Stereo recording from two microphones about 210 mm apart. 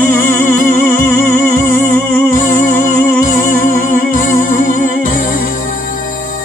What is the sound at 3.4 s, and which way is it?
Music, 40° left (ahead or behind).